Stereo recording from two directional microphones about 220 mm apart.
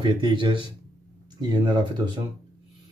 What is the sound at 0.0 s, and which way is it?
Speech, 20° right (ahead or behind).